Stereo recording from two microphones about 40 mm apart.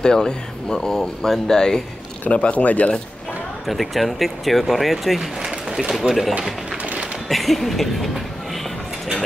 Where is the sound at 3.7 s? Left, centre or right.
Centre.